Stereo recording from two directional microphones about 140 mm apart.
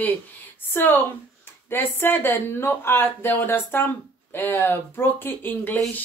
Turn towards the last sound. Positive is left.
turn(degrees=15)  # may be behind; listen again after turning